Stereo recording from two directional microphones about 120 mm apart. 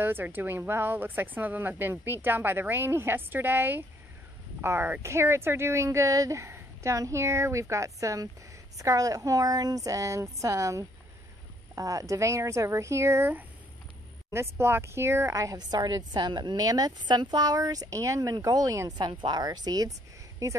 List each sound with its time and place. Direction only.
0.0 s a woman's voice: 15° right (ahead or behind)